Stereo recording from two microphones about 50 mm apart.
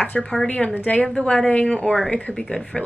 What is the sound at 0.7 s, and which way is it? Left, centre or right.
Speech, left.